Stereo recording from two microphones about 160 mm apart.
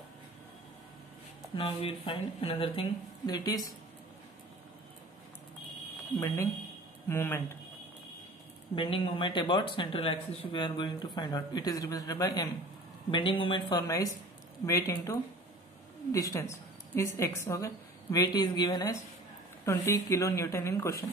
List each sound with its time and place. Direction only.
1.5 s speech: 35° left (ahead or behind)
6.1 s a woman's voice: 20° left (ahead or behind)
8.7 s speech: 35° left (ahead or behind)
16.1 s a woman's voice: 20° left (ahead or behind)